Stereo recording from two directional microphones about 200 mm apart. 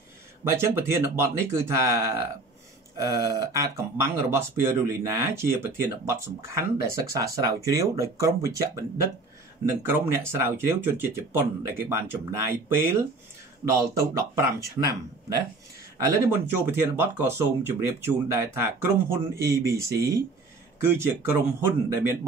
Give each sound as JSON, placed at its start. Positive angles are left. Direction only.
{"t": 0.5, "sound": "speech", "side_deg": -15}
{"t": 9.8, "sound": "speech", "side_deg": -10}